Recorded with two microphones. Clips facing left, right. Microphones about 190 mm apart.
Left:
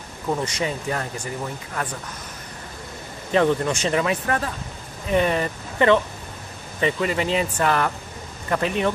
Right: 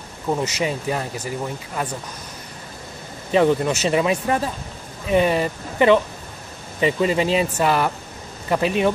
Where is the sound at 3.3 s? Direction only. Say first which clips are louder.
Right 2 dB; 10° right (ahead or behind).